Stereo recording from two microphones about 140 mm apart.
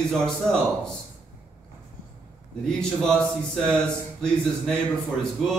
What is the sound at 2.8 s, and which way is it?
A man's voice, 5° left (ahead or behind).